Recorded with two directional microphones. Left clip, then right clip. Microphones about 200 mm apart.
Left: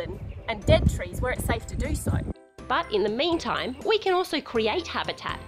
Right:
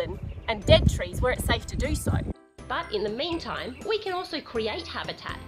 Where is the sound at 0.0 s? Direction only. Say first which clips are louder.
Right 2 dB; 5° left (ahead or behind).